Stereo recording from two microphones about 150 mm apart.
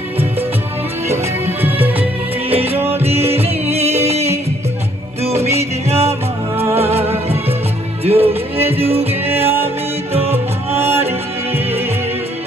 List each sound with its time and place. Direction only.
1.0 s music: 15° right (ahead or behind)
2.5 s music: 40° right (ahead or behind)
5.5 s music: 20° right (ahead or behind)
6.9 s music: 40° right (ahead or behind)
10.3 s music: 15° right (ahead or behind)